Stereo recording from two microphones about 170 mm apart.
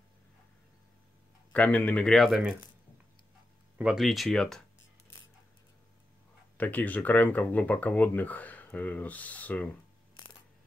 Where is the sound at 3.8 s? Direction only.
Centre (ahead or behind).